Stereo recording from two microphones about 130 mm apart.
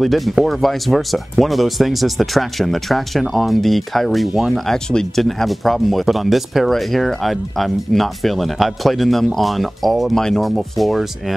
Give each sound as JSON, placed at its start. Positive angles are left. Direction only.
{"t": 0.0, "sound": "speech", "side_deg": 0}